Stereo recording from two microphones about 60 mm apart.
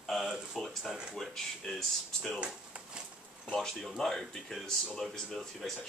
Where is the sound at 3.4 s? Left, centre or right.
Centre.